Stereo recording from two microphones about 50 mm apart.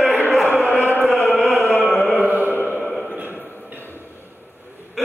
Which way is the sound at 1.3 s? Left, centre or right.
Centre.